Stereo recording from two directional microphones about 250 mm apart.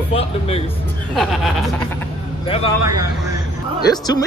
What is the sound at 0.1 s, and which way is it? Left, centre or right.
Speech, left.